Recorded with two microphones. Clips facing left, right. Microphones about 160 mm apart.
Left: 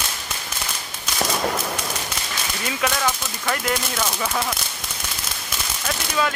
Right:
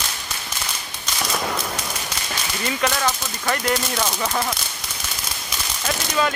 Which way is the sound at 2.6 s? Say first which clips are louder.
Right 1 dB; centre (ahead or behind).